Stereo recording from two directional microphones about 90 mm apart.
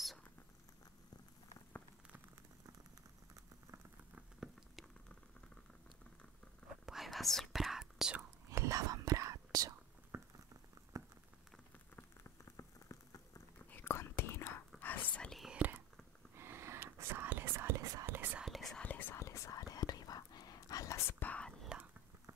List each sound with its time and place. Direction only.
4.1 s a sound: 5° right (ahead or behind)
6.9 s whispering: centre (ahead or behind)
8.5 s whispering: 40° right (ahead or behind)
10.1 s patter: 30° right (ahead or behind)
10.9 s a sound: 35° right (ahead or behind)
11.9 s rain on surface: 25° left (ahead or behind)
12.5 s rain on surface: 35° left (ahead or behind)
13.7 s whispering: 25° left (ahead or behind)
15.2 s whispering: centre (ahead or behind)
15.5 s whispering: 20° right (ahead or behind); by 18.0 s 35° right (ahead or behind)
18.0 s whispering: 20° right (ahead or behind)
18.4 s whispering: centre (ahead or behind)
18.8 s whispering: 20° left (ahead or behind); by 21.2 s 35° left (ahead or behind)
21.2 s whispering: 15° left (ahead or behind)